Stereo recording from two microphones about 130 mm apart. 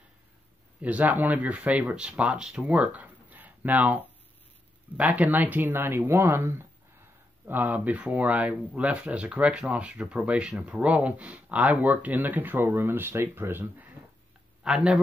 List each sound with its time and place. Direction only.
0.7 s speech: 10° right (ahead or behind)